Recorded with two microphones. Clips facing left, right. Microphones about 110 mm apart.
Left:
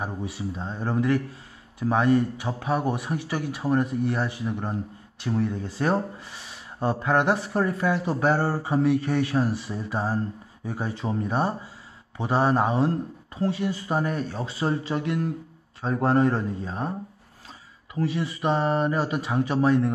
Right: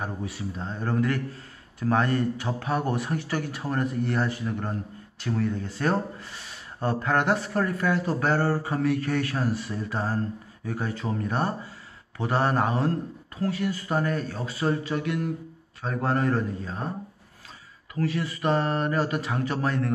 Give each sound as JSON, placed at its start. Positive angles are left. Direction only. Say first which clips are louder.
{"t": 0.0, "sound": "speech", "louder": "left 1 dB", "side_deg": 20}
{"t": 17.9, "sound": "speech", "louder": "left 1 dB", "side_deg": 20}